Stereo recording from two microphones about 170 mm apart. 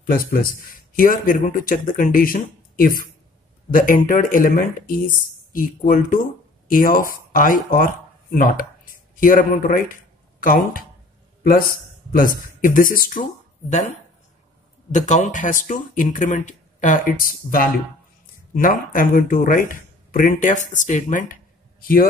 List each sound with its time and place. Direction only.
0.0 s speech: 60° left (ahead or behind)